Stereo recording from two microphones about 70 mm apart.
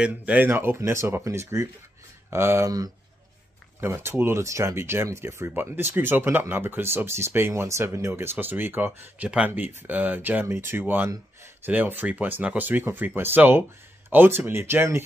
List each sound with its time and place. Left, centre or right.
0.0 s speech: right
0.5 s speech: right
3.8 s speech: right
5.6 s speech: right
10.4 s speech: right